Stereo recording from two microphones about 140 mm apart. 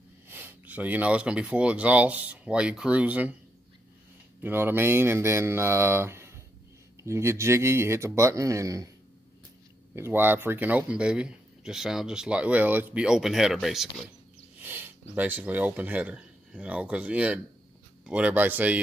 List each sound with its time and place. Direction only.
0.3 s speech: 15° right (ahead or behind)
4.4 s speech: 15° right (ahead or behind)
9.9 s speech: 15° right (ahead or behind)
14.6 s speech: 10° right (ahead or behind)